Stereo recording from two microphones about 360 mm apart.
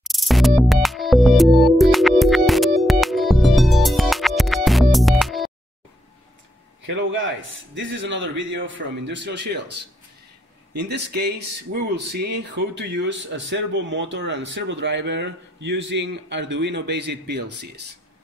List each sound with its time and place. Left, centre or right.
0.0 s music: centre
6.9 s a man's voice: right
10.7 s speech: right